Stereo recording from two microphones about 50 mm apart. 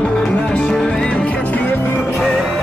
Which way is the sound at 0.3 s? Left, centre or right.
Left.